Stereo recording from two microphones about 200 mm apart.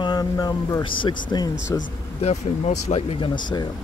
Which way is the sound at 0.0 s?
20° left (ahead or behind).